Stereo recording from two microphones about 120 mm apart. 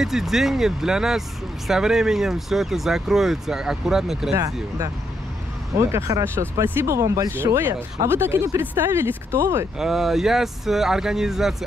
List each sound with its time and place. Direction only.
0.0 s speech: 5° right (ahead or behind)
4.4 s speech: 30° right (ahead or behind)
9.8 s speech: 5° right (ahead or behind)